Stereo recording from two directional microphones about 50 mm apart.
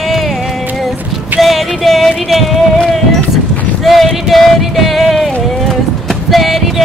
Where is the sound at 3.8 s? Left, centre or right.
Centre.